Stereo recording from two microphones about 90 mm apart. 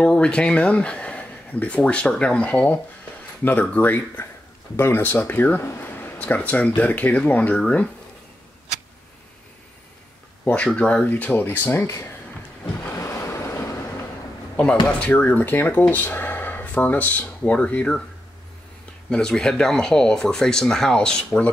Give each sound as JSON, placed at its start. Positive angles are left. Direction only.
{"t": 0.0, "sound": "speech", "side_deg": 10}
{"t": 10.4, "sound": "speech", "side_deg": 15}
{"t": 12.8, "sound": "waves", "side_deg": 30}
{"t": 15.0, "sound": "speech", "side_deg": 15}
{"t": 19.0, "sound": "speech", "side_deg": 10}